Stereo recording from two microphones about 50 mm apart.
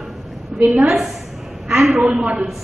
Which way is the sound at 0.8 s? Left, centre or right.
Centre.